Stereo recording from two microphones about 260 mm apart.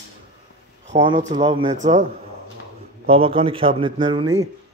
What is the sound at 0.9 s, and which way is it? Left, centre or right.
Speech, centre.